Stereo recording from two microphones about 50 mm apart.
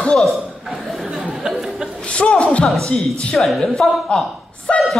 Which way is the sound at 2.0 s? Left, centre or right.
Left.